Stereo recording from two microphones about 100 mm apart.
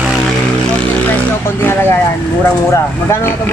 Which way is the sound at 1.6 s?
20° left (ahead or behind).